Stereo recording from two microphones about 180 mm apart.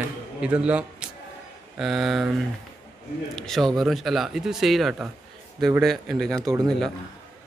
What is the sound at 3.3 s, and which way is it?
Speech, centre (ahead or behind).